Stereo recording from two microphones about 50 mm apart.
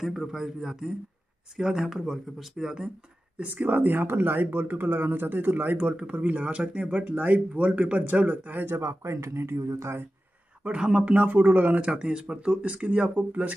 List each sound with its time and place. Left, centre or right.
0.0 s speech: centre
3.3 s speech: right
8.7 s speech: right
10.6 s speech: centre
11.9 s speech: centre